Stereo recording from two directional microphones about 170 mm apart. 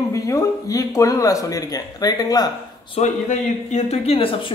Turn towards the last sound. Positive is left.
turn(degrees=30)  # may be behind; listen again after turning